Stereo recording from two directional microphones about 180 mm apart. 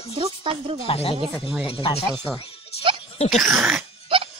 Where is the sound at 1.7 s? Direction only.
30° left (ahead or behind).